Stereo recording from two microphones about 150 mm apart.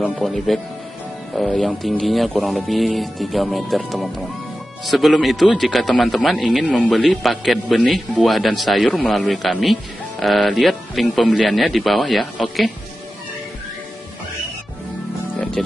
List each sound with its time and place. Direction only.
0.2 s speech: centre (ahead or behind)